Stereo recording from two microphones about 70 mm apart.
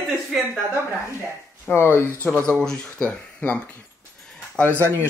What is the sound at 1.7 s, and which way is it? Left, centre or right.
Speech, left.